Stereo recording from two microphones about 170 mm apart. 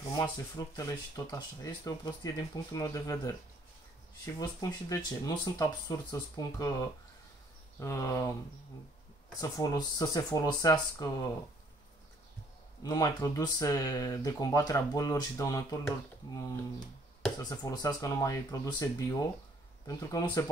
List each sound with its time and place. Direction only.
0.1 s speech: 20° left (ahead or behind)
4.4 s speech: 20° left (ahead or behind)
9.4 s speech: 20° left (ahead or behind)
12.8 s speech: 20° left (ahead or behind)
17.4 s speech: 20° left (ahead or behind)